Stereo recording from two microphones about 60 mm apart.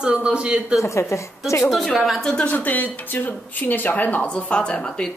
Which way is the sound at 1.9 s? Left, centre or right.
Centre.